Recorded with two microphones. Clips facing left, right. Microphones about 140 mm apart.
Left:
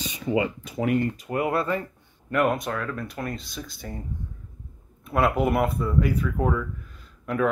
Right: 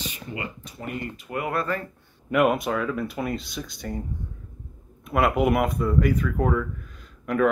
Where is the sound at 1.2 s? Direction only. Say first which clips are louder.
Left 3 dB; 30° left (ahead or behind).